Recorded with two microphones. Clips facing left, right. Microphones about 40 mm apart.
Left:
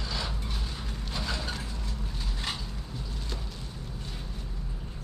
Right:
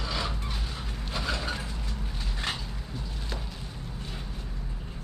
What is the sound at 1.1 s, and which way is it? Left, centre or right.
Mechanisms, centre.